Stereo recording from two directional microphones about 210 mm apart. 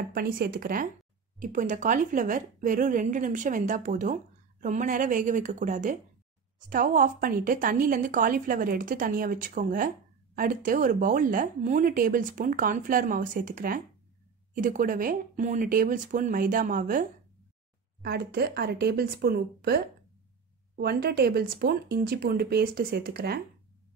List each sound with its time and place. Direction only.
0.1 s a woman's voice: 45° right (ahead or behind)